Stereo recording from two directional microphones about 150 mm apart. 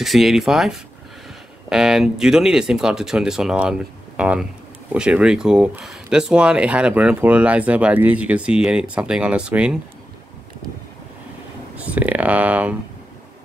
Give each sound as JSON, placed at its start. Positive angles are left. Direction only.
{"t": 0.0, "sound": "speech", "side_deg": 0}
{"t": 11.8, "sound": "speech", "side_deg": -10}